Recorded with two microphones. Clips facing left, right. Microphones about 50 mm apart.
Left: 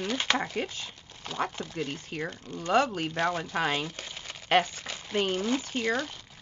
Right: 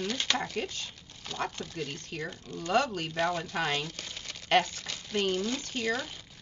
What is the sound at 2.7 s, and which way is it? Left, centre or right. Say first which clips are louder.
Speech: left 3 dB; centre.